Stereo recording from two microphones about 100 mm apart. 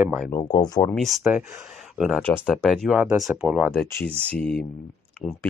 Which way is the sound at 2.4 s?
5° left (ahead or behind).